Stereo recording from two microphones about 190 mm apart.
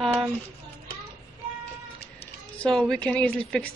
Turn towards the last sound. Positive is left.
turn(degrees=5)  # may be behind; listen again after turning